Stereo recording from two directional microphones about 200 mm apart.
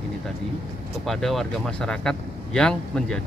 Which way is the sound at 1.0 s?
Centre (ahead or behind).